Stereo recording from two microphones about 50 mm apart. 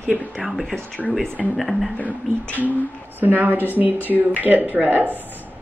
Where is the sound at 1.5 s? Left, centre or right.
Centre.